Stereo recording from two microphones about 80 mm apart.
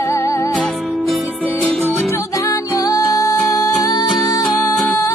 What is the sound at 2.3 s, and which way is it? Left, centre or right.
Music, left.